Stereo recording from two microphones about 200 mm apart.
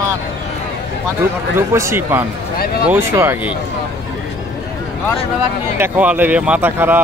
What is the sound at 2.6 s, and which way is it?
Speech, 50° left (ahead or behind).